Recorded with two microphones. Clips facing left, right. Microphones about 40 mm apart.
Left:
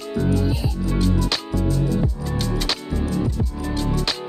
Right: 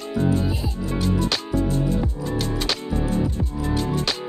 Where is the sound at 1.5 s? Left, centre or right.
Right.